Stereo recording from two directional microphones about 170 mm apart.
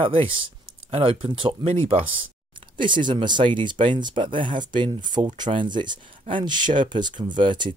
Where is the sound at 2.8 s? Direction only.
25° right (ahead or behind).